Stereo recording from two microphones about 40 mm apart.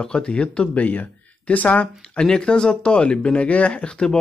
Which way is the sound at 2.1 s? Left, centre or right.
Left.